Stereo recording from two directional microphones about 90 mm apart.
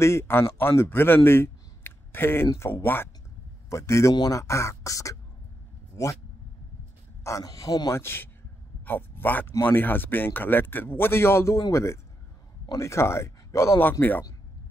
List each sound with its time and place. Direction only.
0.0 s speech: 30° left (ahead or behind)
3.7 s speech: 35° left (ahead or behind)
4.1 s speech: 50° left (ahead or behind)
4.4 s speech: 35° left (ahead or behind)
7.2 s speech: 40° left (ahead or behind)
7.9 s speech: 25° left (ahead or behind)